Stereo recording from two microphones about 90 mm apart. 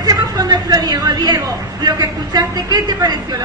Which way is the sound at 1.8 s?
50° right (ahead or behind).